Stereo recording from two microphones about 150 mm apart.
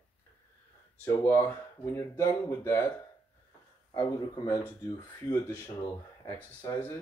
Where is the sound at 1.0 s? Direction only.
15° left (ahead or behind).